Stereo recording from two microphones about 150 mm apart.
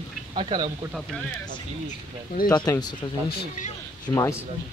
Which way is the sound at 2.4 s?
25° left (ahead or behind).